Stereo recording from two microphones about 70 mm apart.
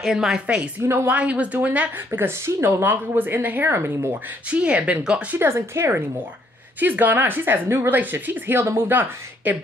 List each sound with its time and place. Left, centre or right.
0.0 s speech: centre
0.8 s speech: right
1.1 s a woman's voice: centre
2.0 s speech: right
4.5 s speech: centre
5.4 s speech: right
6.8 s a woman's voice: right